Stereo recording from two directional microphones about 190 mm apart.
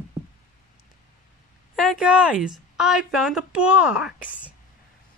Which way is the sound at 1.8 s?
Centre (ahead or behind).